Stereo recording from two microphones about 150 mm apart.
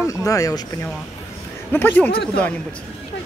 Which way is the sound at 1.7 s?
15° left (ahead or behind).